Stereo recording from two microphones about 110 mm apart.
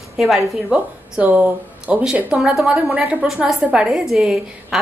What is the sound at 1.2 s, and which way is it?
A woman's voice, 15° right (ahead or behind).